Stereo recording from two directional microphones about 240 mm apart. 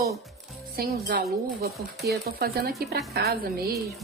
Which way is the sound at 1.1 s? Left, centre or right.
Right.